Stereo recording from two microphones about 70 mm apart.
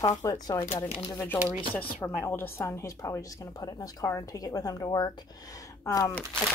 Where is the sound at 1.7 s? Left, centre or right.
Left.